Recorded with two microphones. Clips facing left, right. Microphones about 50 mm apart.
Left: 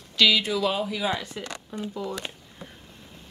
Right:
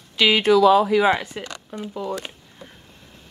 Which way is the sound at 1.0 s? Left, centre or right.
Right.